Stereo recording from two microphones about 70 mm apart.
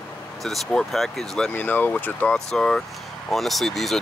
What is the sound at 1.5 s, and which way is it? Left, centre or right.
Speech, left.